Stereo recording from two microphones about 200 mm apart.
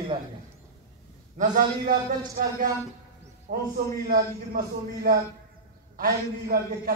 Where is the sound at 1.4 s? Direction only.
45° right (ahead or behind).